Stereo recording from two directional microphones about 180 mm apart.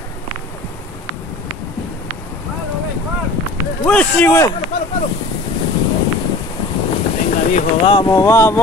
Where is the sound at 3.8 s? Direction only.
10° left (ahead or behind).